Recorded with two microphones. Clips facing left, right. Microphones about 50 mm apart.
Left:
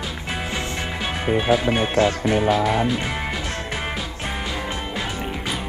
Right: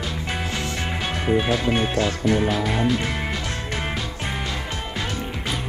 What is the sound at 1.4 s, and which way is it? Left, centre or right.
Speech, centre.